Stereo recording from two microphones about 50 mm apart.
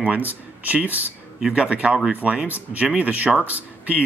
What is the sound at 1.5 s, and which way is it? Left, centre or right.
Speech, right.